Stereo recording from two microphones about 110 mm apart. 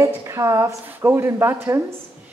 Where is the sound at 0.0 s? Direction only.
25° right (ahead or behind).